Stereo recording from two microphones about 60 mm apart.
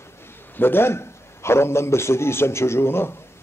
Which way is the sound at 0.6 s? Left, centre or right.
Left.